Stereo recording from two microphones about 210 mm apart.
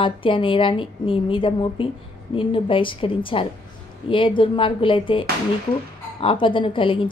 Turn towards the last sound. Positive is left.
turn(degrees=25)  # may be behind; listen again after turning